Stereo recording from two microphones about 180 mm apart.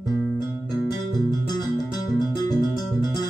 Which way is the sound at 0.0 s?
25° left (ahead or behind).